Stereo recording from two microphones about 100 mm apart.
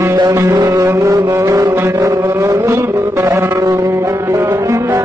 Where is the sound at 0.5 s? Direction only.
35° right (ahead or behind).